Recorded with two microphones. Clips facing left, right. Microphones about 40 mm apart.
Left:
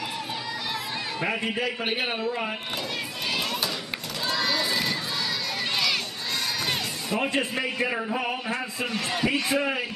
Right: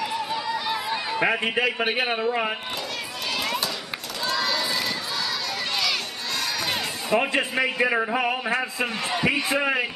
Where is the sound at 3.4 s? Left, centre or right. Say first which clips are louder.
Right 2 dB; centre.